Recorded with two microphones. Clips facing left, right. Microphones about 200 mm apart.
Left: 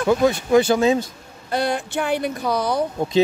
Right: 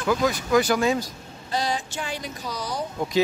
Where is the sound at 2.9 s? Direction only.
25° left (ahead or behind).